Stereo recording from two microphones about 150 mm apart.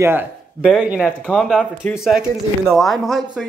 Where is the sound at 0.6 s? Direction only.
5° right (ahead or behind).